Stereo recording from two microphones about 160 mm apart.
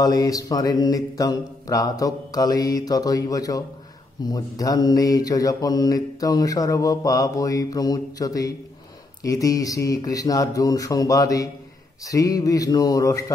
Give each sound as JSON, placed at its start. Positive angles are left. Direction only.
{"t": 0.0, "sound": "mantra", "side_deg": 25}